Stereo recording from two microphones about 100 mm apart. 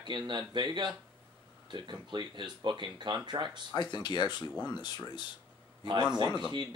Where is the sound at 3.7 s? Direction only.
45° left (ahead or behind).